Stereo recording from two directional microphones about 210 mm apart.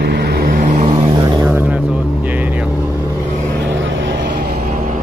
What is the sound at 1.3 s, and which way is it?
Vehicle, 10° right (ahead or behind).